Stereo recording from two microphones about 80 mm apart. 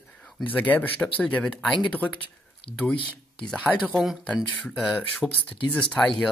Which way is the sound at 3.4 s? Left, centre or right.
Centre.